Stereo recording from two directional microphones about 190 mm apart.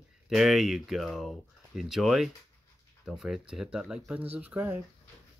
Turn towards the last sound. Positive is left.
turn(degrees=-10)  # may be behind; listen again after turning